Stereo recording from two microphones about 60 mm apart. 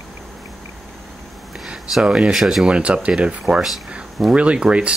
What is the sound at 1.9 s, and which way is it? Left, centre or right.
Speech, centre.